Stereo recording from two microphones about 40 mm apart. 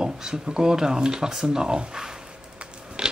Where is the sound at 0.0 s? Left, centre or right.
Centre.